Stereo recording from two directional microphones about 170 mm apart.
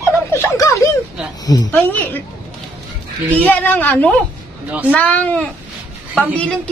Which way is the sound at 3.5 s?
10° left (ahead or behind).